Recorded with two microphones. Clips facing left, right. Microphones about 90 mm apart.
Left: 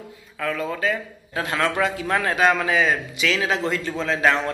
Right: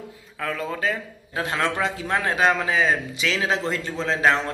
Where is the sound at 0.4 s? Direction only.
25° right (ahead or behind).